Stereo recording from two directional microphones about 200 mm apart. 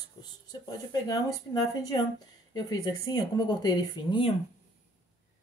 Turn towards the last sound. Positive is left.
turn(degrees=25)  # may be behind; listen again after turning